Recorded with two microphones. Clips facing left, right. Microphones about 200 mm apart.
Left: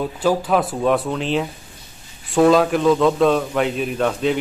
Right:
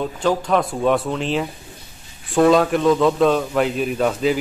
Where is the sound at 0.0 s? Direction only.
5° left (ahead or behind).